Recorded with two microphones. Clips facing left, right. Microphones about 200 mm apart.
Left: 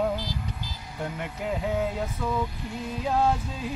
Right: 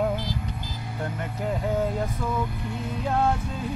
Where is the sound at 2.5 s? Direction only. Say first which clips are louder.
Right 2 dB; 60° right (ahead or behind).